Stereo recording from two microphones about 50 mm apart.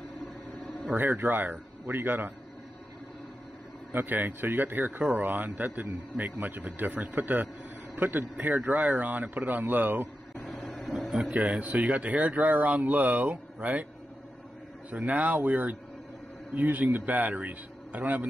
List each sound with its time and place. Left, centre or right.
0.9 s speech: right
3.9 s speech: right
10.4 s vehicle: centre
10.9 s a sound: centre
11.3 s speech: right
14.9 s speech: right